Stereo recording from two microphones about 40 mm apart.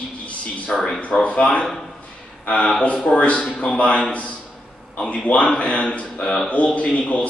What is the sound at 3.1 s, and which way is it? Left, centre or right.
Speech, left.